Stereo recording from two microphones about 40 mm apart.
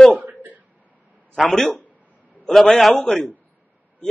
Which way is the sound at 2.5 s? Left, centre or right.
Centre.